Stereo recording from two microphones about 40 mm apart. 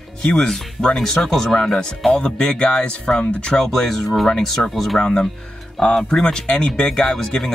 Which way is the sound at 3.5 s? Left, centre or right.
Centre.